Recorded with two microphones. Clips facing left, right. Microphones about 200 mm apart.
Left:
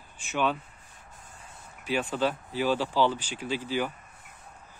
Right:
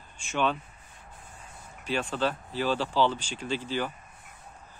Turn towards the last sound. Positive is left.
turn(degrees=10)  # may be behind; listen again after turning